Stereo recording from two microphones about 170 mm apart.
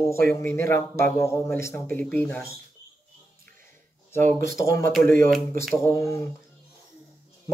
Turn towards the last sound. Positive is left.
turn(degrees=15)  # may be behind; listen again after turning